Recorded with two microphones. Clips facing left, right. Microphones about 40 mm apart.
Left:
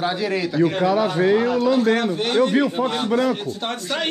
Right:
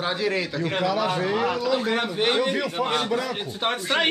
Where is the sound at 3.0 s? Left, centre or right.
Centre.